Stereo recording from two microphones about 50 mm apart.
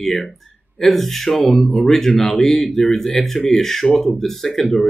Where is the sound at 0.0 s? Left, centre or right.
Centre.